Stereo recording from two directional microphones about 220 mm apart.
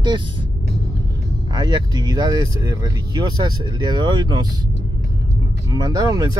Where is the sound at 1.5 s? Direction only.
20° right (ahead or behind).